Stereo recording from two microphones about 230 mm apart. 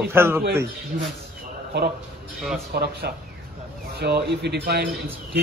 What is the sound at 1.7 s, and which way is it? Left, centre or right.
Speech, right.